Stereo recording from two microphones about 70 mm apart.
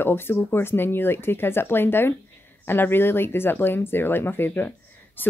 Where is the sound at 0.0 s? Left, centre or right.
Left.